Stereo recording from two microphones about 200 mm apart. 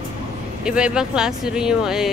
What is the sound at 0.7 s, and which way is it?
A woman's voice, 5° right (ahead or behind).